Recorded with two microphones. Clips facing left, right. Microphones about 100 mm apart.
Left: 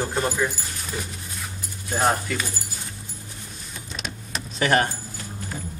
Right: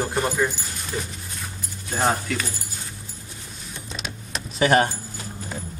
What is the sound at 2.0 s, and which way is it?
Speech, centre (ahead or behind).